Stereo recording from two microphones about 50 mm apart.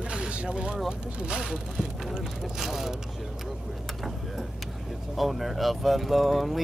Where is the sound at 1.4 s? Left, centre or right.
Centre.